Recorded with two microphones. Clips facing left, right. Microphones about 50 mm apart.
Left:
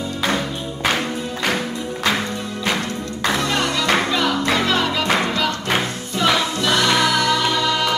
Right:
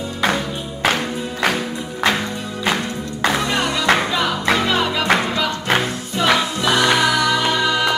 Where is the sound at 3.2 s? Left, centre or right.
Right.